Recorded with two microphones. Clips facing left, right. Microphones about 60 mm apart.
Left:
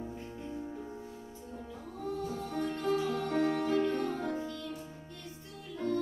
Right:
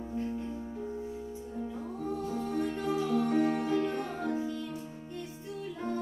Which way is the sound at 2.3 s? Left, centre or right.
Centre.